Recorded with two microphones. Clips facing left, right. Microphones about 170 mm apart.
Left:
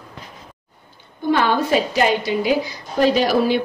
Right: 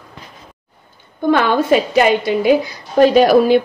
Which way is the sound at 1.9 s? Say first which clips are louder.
Right 5 dB; 55° right (ahead or behind).